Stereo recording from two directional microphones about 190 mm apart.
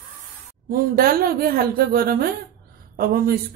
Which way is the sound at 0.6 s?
50° right (ahead or behind).